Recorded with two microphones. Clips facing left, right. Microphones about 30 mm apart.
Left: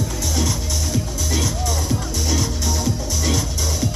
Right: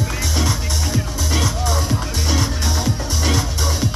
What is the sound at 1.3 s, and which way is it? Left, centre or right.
Music, right.